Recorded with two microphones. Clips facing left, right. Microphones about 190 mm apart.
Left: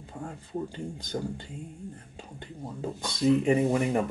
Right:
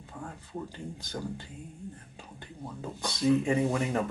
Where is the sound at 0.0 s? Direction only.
30° left (ahead or behind).